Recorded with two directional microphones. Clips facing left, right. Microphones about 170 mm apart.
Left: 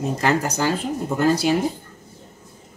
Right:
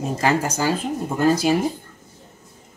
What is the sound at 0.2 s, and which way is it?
Speech, 10° right (ahead or behind).